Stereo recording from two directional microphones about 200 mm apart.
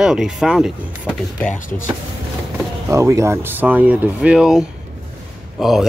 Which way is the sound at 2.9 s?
15° right (ahead or behind).